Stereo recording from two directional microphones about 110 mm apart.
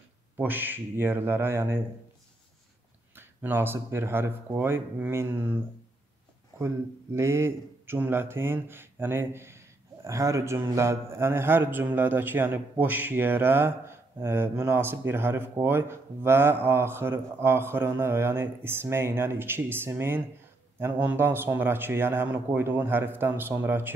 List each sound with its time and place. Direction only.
0.4 s a man's voice: 20° right (ahead or behind)
3.2 s a man's voice: 20° right (ahead or behind)
7.2 s a man's voice: 25° right (ahead or behind)